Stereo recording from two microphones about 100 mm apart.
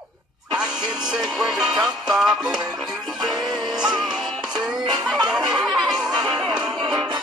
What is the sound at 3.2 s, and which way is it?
Music, 45° right (ahead or behind).